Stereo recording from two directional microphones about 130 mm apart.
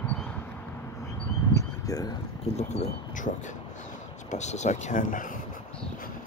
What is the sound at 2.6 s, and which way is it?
Speech, 60° left (ahead or behind).